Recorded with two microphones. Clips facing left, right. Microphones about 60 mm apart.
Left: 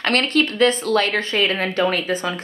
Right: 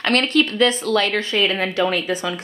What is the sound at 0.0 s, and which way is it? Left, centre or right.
Speech, left.